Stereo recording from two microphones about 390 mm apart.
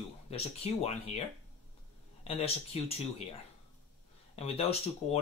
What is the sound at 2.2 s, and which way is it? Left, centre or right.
Speech, centre.